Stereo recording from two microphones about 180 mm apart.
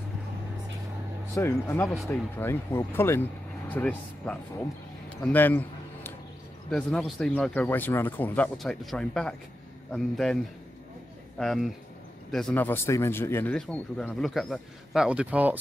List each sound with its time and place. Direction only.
1.3 s speech: 15° left (ahead or behind)
5.2 s a sound: 10° left (ahead or behind)
6.7 s speech: centre (ahead or behind)